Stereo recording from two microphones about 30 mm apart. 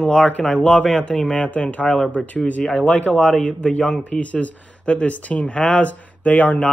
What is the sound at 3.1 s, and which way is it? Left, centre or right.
Speech, left.